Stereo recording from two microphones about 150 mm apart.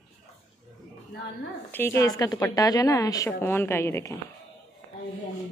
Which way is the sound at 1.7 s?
15° left (ahead or behind).